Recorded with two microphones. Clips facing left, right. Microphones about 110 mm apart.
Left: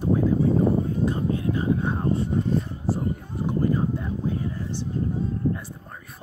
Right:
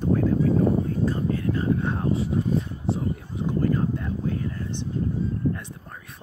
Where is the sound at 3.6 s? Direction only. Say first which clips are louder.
Even; 10° left (ahead or behind).